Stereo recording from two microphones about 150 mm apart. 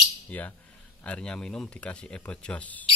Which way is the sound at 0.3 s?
10° left (ahead or behind).